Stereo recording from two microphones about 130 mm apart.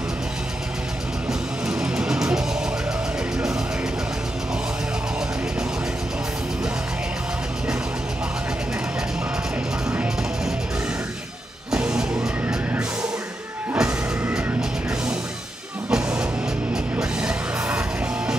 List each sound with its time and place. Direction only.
1.7 s music: 5° right (ahead or behind)
9.8 s music: 5° right (ahead or behind)
11.7 s music: 5° right (ahead or behind)
15.9 s music: 5° right (ahead or behind)